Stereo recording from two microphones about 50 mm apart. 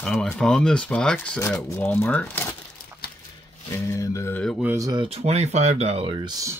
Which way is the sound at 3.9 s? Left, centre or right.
Left.